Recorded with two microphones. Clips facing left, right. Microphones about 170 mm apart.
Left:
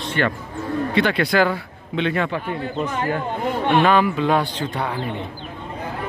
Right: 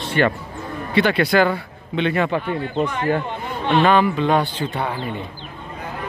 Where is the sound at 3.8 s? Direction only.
Centre (ahead or behind).